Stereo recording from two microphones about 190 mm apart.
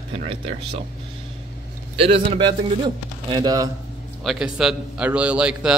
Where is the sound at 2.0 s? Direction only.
30° right (ahead or behind).